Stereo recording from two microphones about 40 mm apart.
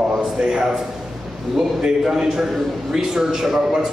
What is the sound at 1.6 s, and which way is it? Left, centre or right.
A man's voice, centre.